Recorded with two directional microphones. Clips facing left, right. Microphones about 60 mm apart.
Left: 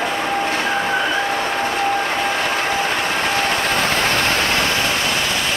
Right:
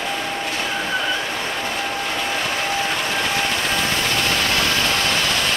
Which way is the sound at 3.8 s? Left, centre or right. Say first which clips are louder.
Left 3 dB; left.